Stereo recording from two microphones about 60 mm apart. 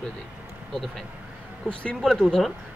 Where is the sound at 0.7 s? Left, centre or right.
Centre.